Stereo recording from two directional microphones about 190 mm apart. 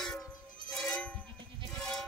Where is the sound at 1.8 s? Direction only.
Centre (ahead or behind).